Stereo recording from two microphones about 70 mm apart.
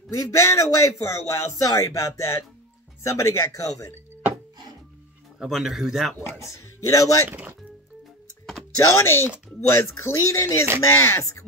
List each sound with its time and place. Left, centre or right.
0.1 s speech: left
3.6 s speech: left
5.4 s a man's voice: centre
6.2 s speech: left
7.2 s speech: right
8.7 s speech: left